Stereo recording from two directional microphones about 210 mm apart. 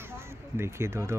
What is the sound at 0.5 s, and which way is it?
Speech, 10° right (ahead or behind).